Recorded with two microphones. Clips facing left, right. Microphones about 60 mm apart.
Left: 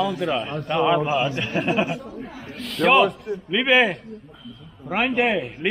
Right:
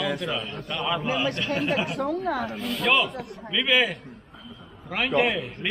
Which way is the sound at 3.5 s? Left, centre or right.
Left.